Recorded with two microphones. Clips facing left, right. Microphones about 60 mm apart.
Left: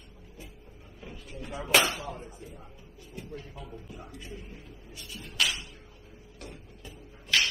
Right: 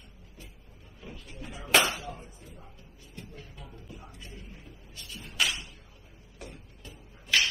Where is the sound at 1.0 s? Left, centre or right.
Centre.